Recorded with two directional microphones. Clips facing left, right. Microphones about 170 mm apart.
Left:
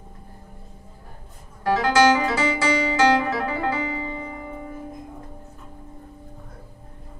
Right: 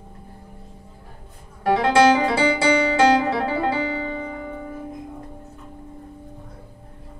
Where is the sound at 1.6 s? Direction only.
30° right (ahead or behind).